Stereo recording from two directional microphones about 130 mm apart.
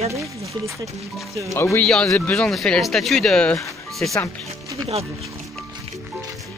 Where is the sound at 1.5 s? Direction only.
15° left (ahead or behind); by 4.2 s centre (ahead or behind).